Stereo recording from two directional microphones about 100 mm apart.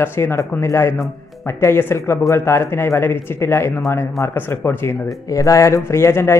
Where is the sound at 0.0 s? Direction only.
20° left (ahead or behind).